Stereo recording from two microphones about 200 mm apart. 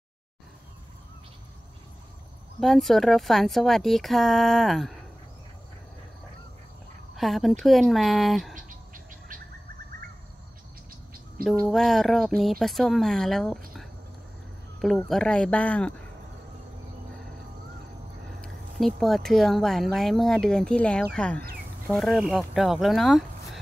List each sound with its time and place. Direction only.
2.6 s speech: centre (ahead or behind)
7.2 s speech: centre (ahead or behind)
8.5 s gargling: 40° right (ahead or behind)
11.4 s speech: 45° right (ahead or behind)
11.7 s speech: centre (ahead or behind)
14.8 s speech: centre (ahead or behind)
18.4 s speech: centre (ahead or behind)